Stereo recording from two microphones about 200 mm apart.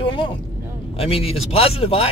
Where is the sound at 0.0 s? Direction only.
25° left (ahead or behind).